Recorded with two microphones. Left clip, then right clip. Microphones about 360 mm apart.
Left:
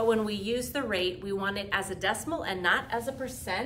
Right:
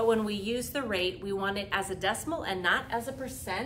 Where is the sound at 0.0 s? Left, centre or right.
Centre.